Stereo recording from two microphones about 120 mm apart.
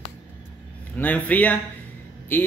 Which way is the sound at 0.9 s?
15° left (ahead or behind).